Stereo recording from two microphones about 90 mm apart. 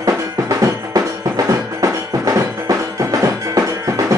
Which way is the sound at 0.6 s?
40° right (ahead or behind).